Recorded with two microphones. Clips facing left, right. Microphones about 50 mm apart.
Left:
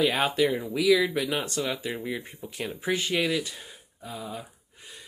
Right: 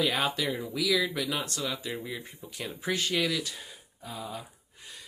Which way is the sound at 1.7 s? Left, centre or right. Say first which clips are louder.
Left 4 dB; left.